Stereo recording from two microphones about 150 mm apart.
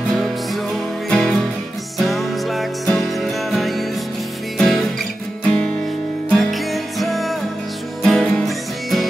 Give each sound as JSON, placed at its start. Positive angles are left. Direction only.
{"t": 1.1, "sound": "music", "side_deg": 5}
{"t": 5.4, "sound": "guitar", "side_deg": 5}
{"t": 6.3, "sound": "music", "side_deg": 0}